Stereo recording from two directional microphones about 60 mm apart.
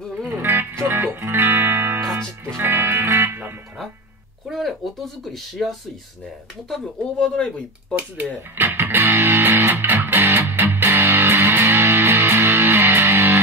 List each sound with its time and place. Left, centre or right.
0.3 s music: right
2.0 s music: right
2.6 s music: right
4.5 s a sound: centre
6.7 s speech: centre
8.7 s music: right